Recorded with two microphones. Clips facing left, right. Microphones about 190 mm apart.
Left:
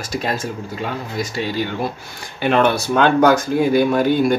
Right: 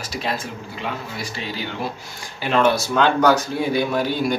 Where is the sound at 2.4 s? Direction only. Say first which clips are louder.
Left 2 dB; 60° left (ahead or behind).